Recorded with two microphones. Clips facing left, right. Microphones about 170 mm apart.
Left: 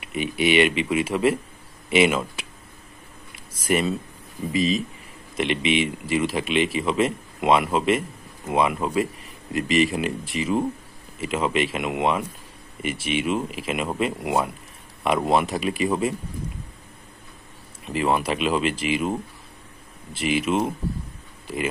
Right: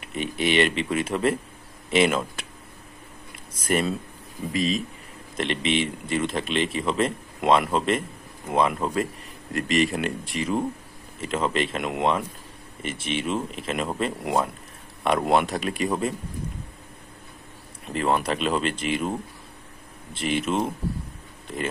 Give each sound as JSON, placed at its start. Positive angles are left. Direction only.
{"t": 0.1, "sound": "a man's voice", "side_deg": 5}
{"t": 3.6, "sound": "a man's voice", "side_deg": 0}
{"t": 17.8, "sound": "a man's voice", "side_deg": 0}